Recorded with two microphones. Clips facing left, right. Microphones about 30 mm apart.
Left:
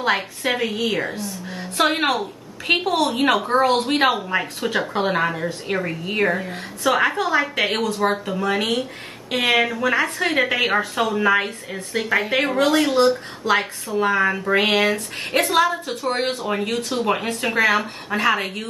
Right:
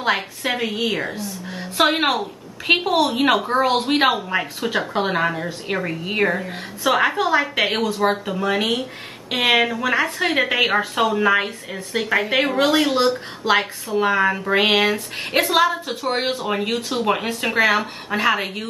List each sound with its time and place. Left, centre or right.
0.0 s a woman's voice: centre